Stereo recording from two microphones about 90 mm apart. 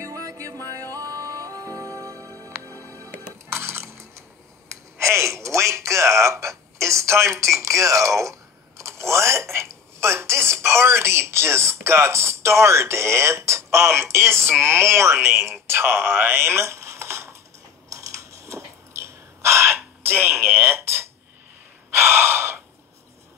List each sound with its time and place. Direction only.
0.0 s music: 35° right (ahead or behind)
4.9 s a man's voice: 30° right (ahead or behind)
17.8 s a sound: 35° right (ahead or behind)
21.9 s gasp: 30° right (ahead or behind)